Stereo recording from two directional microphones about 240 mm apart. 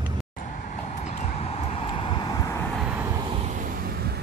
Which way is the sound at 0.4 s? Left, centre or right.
Left.